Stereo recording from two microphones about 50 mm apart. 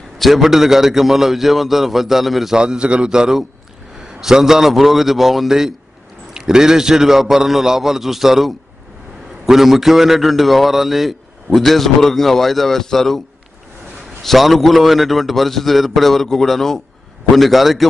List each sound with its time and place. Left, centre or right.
0.2 s a man's voice: centre
2.5 s a man's voice: centre
14.2 s a man's voice: centre